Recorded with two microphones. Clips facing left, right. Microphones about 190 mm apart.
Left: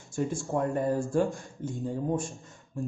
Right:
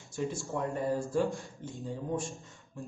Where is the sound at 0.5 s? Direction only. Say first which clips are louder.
Left 5 dB; 50° left (ahead or behind).